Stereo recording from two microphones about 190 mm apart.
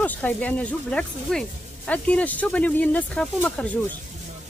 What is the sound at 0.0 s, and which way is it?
Speech, 10° left (ahead or behind).